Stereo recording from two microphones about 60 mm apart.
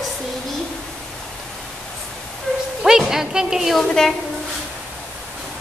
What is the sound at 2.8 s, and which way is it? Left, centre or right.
Speech, centre.